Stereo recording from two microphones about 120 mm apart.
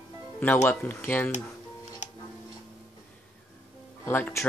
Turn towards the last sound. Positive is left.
turn(degrees=20)  # may be behind; listen again after turning